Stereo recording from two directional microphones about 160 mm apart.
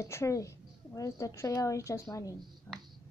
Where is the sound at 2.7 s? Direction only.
10° left (ahead or behind).